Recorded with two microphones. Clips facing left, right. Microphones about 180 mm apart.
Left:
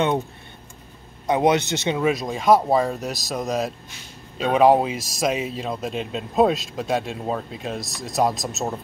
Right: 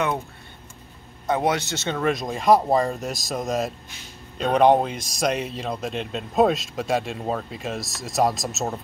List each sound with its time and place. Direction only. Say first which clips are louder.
1.2 s speech: left 4 dB; 15° left (ahead or behind); by 8.7 s centre (ahead or behind)